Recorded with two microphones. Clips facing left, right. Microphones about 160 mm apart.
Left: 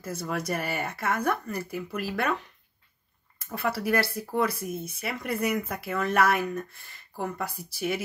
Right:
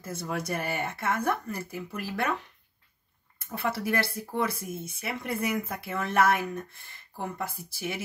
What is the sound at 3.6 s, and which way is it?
Speech, 25° right (ahead or behind).